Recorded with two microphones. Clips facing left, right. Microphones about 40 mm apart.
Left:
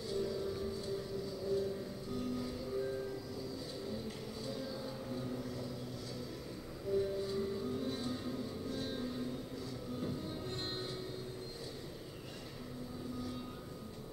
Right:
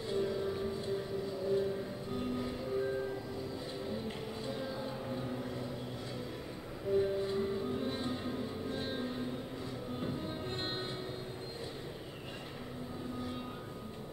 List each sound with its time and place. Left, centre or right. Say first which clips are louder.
0.1 s vehicle: right 4 dB; right
4.5 s music: right 3 dB; right
6.9 s music: right 4 dB; right